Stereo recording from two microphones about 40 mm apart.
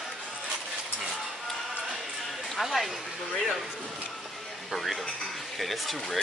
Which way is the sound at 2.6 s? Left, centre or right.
Centre.